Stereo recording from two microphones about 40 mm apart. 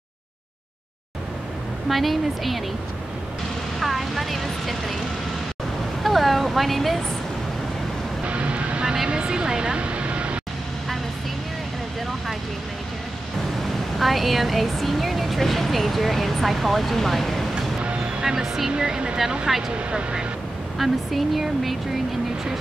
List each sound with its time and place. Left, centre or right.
1.9 s speech: centre
3.8 s vehicle: centre
6.0 s a sound: centre
8.3 s vehicle: right
8.9 s speech: centre
9.2 s vehicle: right
13.6 s speech: centre
17.8 s music: right
18.2 s speech: centre
18.7 s speech: right
20.7 s speech: centre